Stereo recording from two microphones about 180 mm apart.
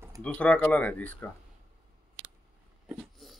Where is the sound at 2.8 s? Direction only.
Centre (ahead or behind).